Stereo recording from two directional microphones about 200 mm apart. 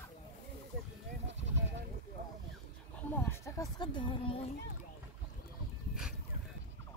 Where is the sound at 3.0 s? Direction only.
10° left (ahead or behind); by 4.5 s 25° left (ahead or behind).